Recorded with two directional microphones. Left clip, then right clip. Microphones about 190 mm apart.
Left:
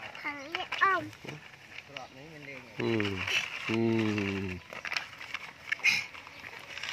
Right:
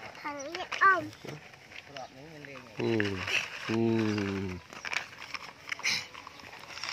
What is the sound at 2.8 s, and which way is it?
Speech, 15° right (ahead or behind).